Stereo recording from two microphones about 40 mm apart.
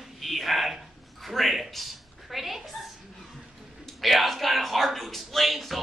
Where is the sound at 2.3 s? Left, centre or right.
Centre.